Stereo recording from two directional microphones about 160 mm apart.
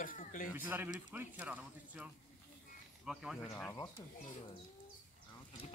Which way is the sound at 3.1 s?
Centre (ahead or behind).